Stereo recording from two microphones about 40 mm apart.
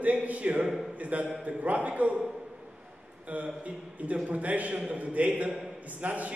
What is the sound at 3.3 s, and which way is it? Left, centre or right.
A man's voice, right.